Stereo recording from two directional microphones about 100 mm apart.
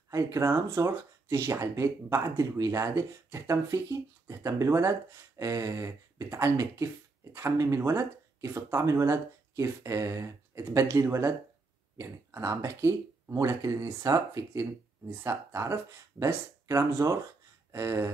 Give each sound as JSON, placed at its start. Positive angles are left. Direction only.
{"t": 0.1, "sound": "speech", "side_deg": -30}